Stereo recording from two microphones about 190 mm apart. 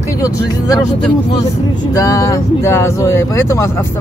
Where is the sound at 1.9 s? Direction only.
15° left (ahead or behind).